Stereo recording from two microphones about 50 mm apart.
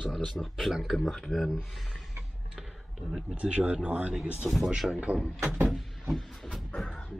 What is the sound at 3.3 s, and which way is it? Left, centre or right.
Speech, right.